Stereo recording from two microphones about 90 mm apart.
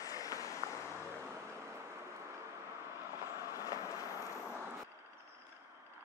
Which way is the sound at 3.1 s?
30° right (ahead or behind).